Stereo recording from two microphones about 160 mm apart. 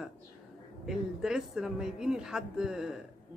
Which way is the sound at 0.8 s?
5° right (ahead or behind).